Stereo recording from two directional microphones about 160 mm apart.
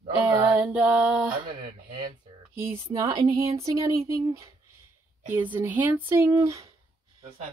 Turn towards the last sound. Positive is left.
turn(degrees=-20)  # may be behind; listen again after turning